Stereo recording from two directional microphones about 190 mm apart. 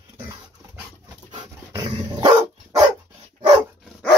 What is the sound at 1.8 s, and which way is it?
Dog, 25° right (ahead or behind).